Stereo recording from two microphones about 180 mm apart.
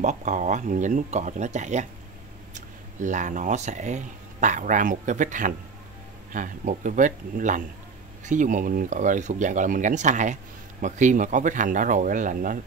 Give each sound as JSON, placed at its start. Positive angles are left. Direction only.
{"t": 0.0, "sound": "speech", "side_deg": -40}